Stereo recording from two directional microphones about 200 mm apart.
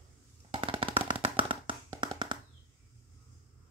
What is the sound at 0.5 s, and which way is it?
Machine gun, 25° right (ahead or behind).